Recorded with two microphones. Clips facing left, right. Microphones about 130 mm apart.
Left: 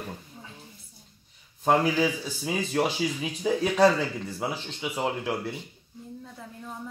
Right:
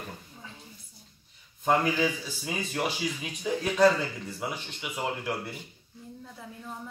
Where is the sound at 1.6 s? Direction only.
35° left (ahead or behind).